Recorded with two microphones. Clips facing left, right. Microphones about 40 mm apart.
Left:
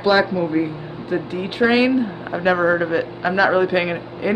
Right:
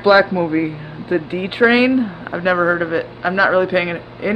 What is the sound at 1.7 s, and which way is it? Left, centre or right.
Speech, centre.